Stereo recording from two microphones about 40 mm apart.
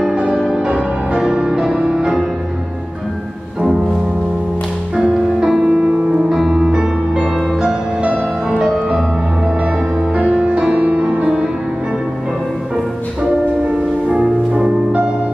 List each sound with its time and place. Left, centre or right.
0.1 s music: right
4.9 s music: centre
10.6 s music: right
13.2 s music: right